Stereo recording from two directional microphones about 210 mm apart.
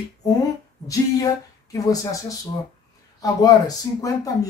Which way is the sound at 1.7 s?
15° left (ahead or behind).